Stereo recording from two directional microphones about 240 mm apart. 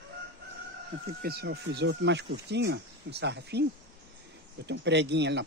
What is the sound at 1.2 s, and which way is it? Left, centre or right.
Speech, right.